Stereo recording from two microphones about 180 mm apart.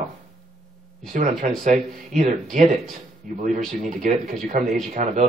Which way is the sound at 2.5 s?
40° right (ahead or behind).